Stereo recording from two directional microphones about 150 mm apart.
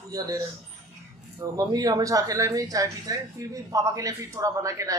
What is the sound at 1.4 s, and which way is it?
Speech, 25° right (ahead or behind).